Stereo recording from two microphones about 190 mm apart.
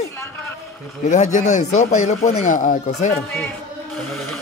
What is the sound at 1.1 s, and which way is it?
Speech, 40° left (ahead or behind).